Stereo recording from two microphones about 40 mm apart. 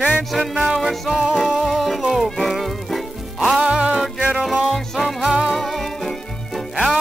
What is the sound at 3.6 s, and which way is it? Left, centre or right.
Music, right.